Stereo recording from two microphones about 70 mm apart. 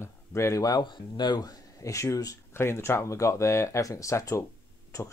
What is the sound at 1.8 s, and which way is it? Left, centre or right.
Speech, left.